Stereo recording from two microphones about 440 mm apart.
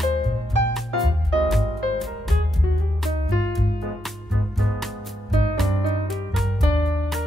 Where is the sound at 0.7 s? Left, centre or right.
Centre.